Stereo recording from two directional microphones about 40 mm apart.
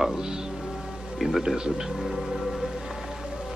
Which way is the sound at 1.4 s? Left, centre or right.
Centre.